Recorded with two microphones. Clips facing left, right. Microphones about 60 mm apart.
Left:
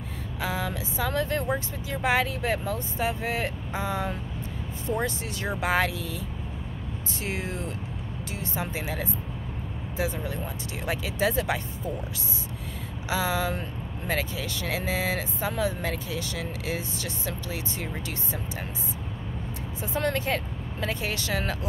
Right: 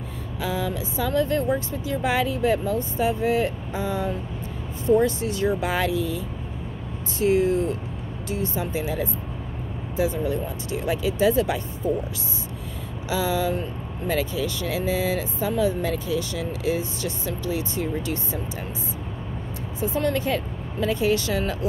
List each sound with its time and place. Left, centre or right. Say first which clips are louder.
0.4 s speech: right 3 dB; left
5.0 s speech: right 8 dB; left
5.6 s speech: right 2 dB; left
8.3 s speech: right 6 dB; left
13.1 s speech: right 3 dB; left
19.9 s speech: right 3 dB; left